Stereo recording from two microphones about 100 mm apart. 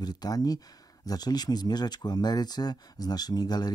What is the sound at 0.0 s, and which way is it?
Speech, 40° left (ahead or behind).